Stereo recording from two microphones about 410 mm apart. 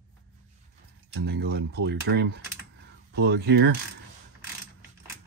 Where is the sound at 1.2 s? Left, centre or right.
Right.